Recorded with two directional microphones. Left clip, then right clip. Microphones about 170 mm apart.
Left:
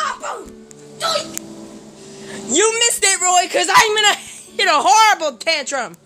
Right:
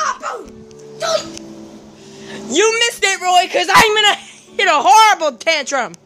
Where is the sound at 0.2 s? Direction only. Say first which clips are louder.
Right 2 dB; 40° right (ahead or behind).